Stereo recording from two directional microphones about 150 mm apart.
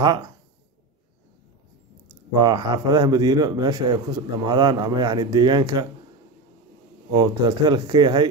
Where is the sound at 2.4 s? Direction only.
30° right (ahead or behind).